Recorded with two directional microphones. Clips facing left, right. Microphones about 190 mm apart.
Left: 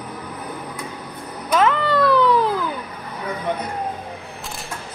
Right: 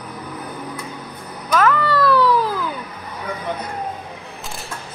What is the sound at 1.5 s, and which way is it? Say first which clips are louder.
Cat: even; 25° left (ahead or behind).